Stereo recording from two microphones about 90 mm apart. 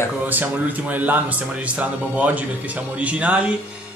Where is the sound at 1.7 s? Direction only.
15° right (ahead or behind).